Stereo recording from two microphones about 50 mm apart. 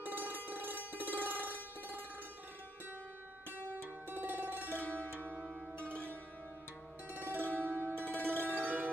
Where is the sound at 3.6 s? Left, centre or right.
Right.